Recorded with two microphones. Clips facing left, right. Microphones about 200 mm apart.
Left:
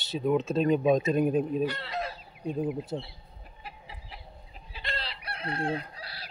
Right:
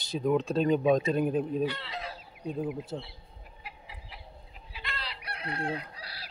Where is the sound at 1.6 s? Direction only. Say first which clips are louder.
Left 2 dB; 45° left (ahead or behind).